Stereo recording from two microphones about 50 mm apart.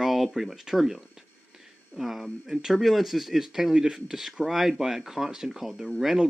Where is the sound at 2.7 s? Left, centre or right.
Centre.